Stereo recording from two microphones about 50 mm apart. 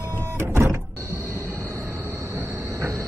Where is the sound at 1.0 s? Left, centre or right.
Right.